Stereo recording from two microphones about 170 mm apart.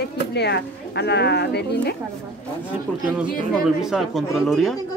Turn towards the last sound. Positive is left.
turn(degrees=0)  # may be behind; listen again after turning